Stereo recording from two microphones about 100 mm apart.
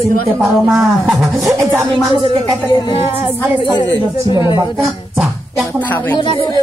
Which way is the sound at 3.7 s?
50° left (ahead or behind).